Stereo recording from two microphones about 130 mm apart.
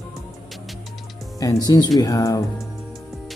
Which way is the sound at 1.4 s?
30° left (ahead or behind).